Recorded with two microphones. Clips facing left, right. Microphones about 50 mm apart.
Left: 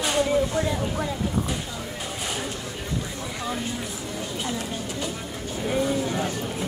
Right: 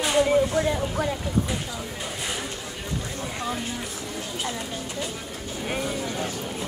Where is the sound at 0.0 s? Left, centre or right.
Centre.